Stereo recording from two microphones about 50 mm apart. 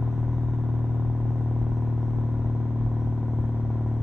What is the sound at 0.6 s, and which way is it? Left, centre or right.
Vehicle, centre.